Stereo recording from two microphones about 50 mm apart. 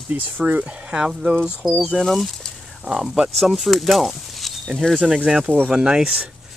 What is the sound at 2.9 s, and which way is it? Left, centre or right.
Speech, centre.